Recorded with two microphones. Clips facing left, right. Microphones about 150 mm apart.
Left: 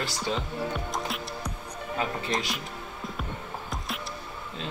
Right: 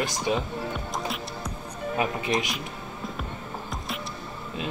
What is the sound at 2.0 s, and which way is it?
Speech, 20° right (ahead or behind).